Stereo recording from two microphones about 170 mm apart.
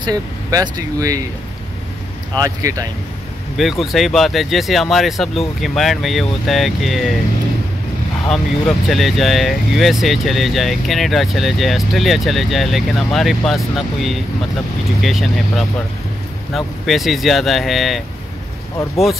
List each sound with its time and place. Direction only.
0.0 s speech: 20° right (ahead or behind)
2.3 s speech: 20° right (ahead or behind)
3.5 s speech: centre (ahead or behind)
8.3 s speech: centre (ahead or behind)